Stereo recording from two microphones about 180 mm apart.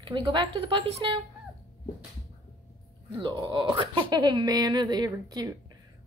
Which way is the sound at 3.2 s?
25° right (ahead or behind).